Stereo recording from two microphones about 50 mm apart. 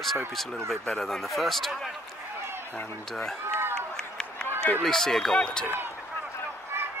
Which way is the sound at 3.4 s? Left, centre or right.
Right.